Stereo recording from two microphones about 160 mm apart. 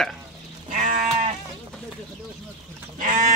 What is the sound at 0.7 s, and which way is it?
Sheep, 50° right (ahead or behind).